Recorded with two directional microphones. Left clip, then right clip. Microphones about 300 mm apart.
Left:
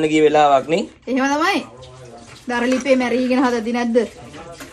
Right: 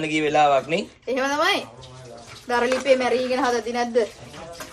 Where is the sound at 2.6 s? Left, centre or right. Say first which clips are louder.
Left 2 dB; left.